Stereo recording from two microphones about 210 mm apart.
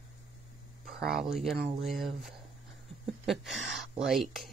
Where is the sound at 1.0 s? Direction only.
Centre (ahead or behind).